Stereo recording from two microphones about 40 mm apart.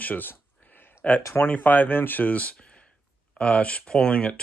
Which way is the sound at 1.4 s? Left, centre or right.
Left.